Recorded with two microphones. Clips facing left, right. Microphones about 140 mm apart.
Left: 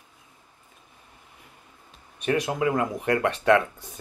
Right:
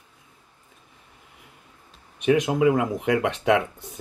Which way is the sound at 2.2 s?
15° right (ahead or behind).